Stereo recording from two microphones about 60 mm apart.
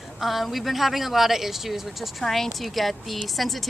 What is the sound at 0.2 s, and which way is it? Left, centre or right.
A woman's voice, centre.